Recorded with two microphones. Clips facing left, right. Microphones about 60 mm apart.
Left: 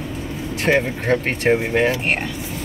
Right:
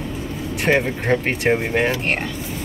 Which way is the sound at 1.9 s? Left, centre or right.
Centre.